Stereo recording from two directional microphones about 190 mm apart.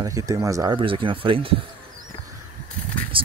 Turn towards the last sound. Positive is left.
turn(degrees=-25)  # may be behind; listen again after turning